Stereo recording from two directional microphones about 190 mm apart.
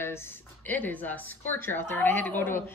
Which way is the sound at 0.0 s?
10° left (ahead or behind).